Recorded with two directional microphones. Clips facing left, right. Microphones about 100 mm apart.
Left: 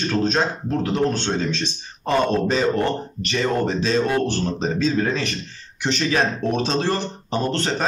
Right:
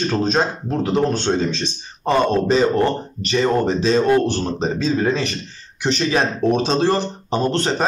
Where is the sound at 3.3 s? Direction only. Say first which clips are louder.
Right 4 dB; 25° right (ahead or behind).